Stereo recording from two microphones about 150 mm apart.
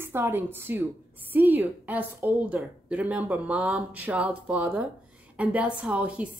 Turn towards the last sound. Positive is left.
turn(degrees=-10)  # may be behind; listen again after turning